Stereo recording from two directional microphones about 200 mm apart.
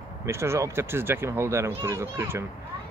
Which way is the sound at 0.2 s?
15° right (ahead or behind).